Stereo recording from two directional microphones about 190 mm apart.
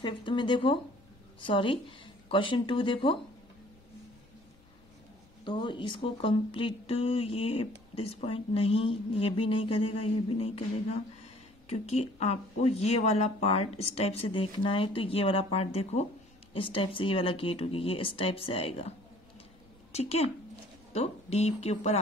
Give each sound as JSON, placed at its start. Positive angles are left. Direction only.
{"t": 0.0, "sound": "a woman's voice", "side_deg": 25}
{"t": 5.4, "sound": "speech", "side_deg": 25}
{"t": 11.6, "sound": "a woman's voice", "side_deg": 35}